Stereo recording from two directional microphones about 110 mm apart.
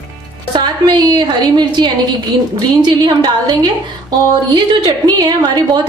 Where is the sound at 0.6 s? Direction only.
40° right (ahead or behind).